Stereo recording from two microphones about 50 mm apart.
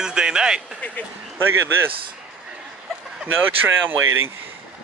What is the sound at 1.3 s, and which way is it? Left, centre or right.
Speech, right.